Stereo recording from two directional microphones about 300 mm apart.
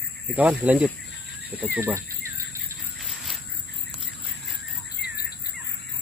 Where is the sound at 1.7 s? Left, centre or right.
Centre.